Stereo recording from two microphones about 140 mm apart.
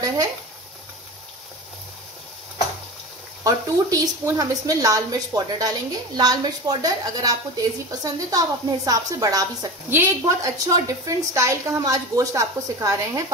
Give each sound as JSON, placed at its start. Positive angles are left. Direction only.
{"t": 3.4, "sound": "a woman's voice", "side_deg": -25}